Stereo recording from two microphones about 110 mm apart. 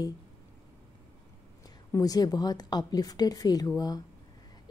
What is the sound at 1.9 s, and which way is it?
A woman's voice, 35° left (ahead or behind).